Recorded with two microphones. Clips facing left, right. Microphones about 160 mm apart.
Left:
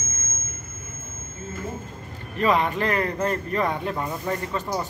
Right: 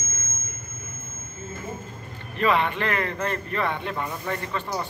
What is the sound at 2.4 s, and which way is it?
Speech, 40° left (ahead or behind).